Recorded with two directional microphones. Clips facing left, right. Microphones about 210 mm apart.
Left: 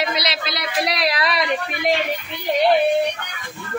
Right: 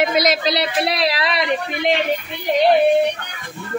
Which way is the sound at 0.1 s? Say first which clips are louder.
Right 8 dB; 45° right (ahead or behind).